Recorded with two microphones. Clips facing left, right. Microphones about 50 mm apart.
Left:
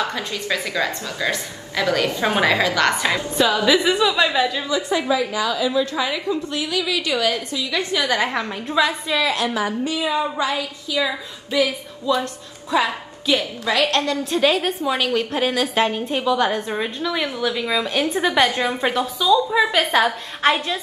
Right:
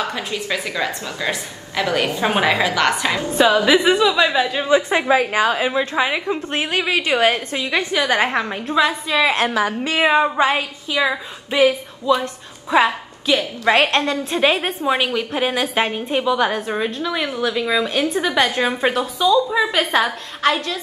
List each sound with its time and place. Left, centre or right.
0.1 s a woman's voice: right
3.2 s a woman's voice: right
9.5 s a woman's voice: right
20.4 s a woman's voice: left